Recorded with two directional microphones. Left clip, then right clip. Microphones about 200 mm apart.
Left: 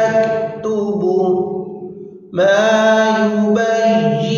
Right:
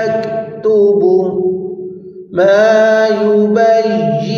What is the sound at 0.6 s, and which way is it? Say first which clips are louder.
Music: right 12 dB; 30° right (ahead or behind).